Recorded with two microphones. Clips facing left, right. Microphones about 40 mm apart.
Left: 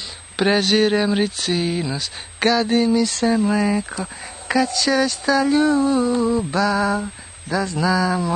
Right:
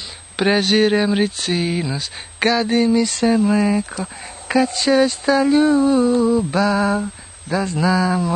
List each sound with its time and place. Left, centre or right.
0.4 s speech: centre
4.6 s speech: centre
5.5 s a sound: centre
6.1 s speech: centre
6.5 s speech: centre